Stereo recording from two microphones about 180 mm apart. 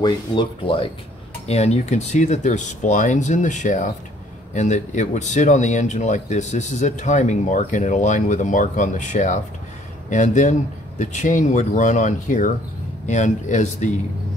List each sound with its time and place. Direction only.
0.0 s speech: 25° left (ahead or behind)